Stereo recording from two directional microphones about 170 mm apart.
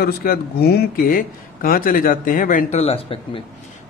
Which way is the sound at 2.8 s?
35° left (ahead or behind).